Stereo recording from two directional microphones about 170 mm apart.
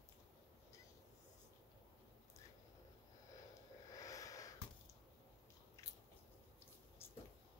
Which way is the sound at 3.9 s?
20° left (ahead or behind).